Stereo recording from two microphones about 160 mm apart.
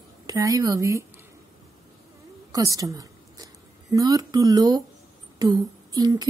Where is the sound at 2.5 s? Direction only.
20° right (ahead or behind).